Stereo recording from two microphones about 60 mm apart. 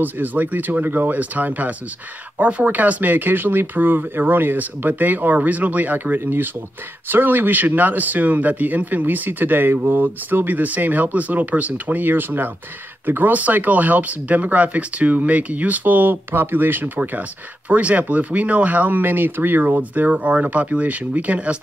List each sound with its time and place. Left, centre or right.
0.0 s speech: right